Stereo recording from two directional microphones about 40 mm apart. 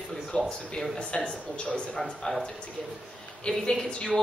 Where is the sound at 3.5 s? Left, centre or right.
Centre.